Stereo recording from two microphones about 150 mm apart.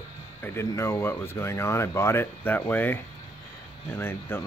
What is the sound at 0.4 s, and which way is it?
Speech, 15° left (ahead or behind).